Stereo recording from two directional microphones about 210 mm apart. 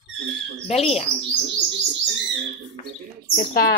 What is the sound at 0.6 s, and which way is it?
Speech, 30° left (ahead or behind).